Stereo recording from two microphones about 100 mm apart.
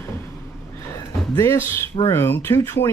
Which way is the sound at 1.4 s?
25° left (ahead or behind).